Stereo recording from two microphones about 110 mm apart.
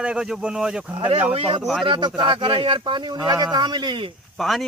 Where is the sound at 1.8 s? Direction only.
45° right (ahead or behind).